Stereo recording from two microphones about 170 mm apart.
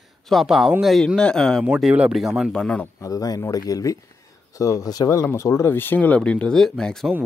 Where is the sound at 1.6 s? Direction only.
5° right (ahead or behind).